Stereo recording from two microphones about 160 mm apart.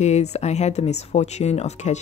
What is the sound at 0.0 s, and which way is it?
Speech, 45° left (ahead or behind).